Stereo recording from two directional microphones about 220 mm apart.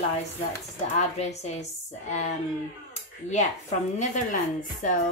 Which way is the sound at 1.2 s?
30° left (ahead or behind).